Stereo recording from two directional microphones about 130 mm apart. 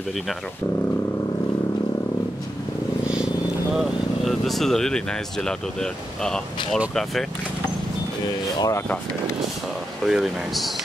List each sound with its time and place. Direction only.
3.7 s speech: centre (ahead or behind)
8.5 s speech: 30° left (ahead or behind)
10.0 s speech: 5° right (ahead or behind)